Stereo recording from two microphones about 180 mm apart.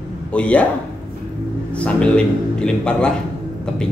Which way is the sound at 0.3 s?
5° left (ahead or behind).